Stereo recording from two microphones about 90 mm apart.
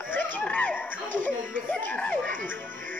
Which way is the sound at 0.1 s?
15° left (ahead or behind).